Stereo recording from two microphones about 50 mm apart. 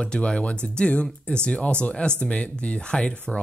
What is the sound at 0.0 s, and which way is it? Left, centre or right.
Speech, centre.